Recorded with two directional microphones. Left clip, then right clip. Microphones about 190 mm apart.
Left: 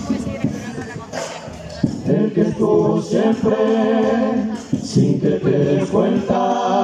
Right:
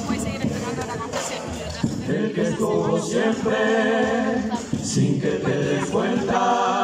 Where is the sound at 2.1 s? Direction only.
25° left (ahead or behind).